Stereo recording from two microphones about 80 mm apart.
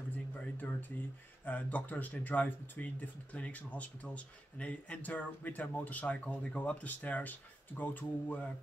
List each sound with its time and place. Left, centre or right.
0.6 s speech: left